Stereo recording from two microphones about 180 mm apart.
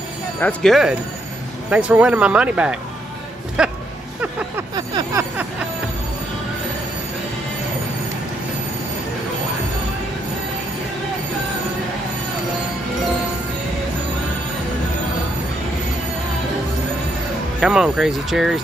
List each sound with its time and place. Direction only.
0.4 s speech: 5° left (ahead or behind)
3.6 s music: 5° right (ahead or behind)
4.7 s a sound: 25° right (ahead or behind)
17.6 s speech: 5° right (ahead or behind)